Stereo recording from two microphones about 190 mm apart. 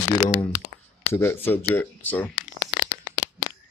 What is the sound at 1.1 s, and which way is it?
Speech, 10° left (ahead or behind).